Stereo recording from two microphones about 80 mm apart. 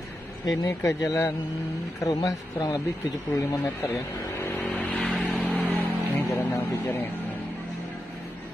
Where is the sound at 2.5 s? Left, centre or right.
Left.